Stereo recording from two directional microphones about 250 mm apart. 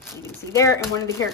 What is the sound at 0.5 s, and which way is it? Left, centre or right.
Speech, centre.